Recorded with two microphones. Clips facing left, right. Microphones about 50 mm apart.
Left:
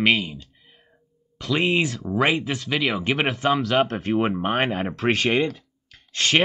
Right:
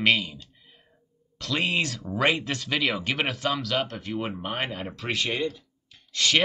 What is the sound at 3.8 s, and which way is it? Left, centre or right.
Speech, left.